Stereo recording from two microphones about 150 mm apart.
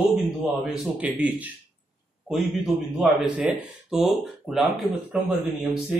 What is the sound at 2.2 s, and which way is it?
A man's voice, centre (ahead or behind).